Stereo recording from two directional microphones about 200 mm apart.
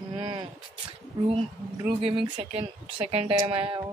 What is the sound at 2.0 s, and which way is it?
A woman's voice, 30° right (ahead or behind).